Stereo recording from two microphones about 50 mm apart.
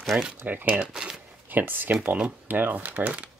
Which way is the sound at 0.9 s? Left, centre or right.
Centre.